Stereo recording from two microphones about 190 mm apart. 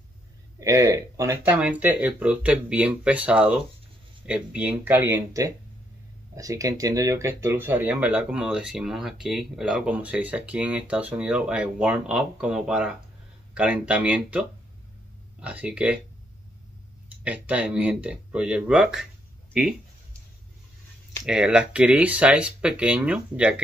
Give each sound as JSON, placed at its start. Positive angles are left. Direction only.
{"t": 0.6, "sound": "speech", "side_deg": -15}
{"t": 15.4, "sound": "speech", "side_deg": -5}
{"t": 17.2, "sound": "speech", "side_deg": -5}
{"t": 21.3, "sound": "speech", "side_deg": -5}